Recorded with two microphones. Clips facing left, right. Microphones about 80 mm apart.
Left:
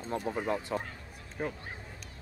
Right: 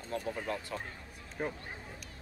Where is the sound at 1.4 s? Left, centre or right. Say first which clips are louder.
Left 1 dB; centre.